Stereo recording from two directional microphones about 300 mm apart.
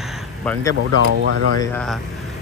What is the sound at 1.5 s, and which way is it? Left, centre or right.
Speech, centre.